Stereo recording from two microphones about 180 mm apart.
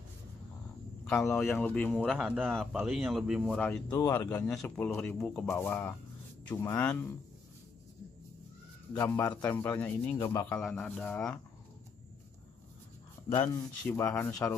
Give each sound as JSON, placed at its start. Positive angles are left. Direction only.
{"t": 1.0, "sound": "speech", "side_deg": 5}
{"t": 3.9, "sound": "a man's voice", "side_deg": 20}
{"t": 8.9, "sound": "a man's voice", "side_deg": 10}
{"t": 13.3, "sound": "a man's voice", "side_deg": 10}